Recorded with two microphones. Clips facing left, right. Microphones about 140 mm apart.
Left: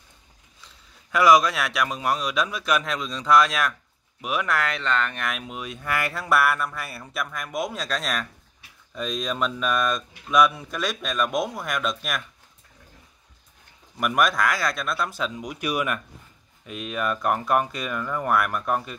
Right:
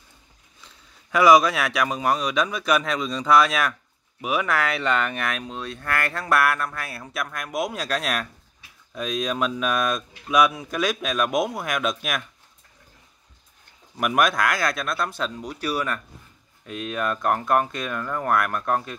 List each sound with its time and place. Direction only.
1.1 s speech: centre (ahead or behind)
13.9 s speech: centre (ahead or behind); by 16.0 s 15° left (ahead or behind)
16.6 s speech: 5° left (ahead or behind)